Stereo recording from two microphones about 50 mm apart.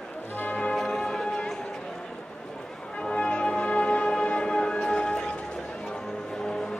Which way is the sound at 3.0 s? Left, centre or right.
Centre.